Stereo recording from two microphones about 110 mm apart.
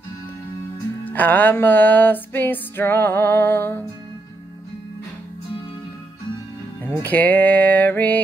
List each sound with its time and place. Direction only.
1.0 s music: 15° left (ahead or behind)
6.8 s music: 20° left (ahead or behind)